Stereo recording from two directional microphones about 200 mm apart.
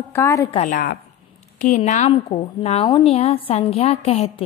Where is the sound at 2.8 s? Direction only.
20° left (ahead or behind).